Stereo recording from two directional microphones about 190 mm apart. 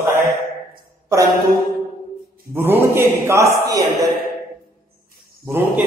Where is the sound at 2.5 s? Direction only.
10° right (ahead or behind).